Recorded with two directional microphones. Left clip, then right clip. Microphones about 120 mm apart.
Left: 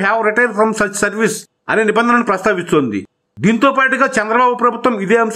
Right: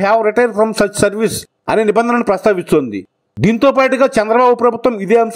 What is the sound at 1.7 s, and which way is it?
A man's voice, 45° right (ahead or behind).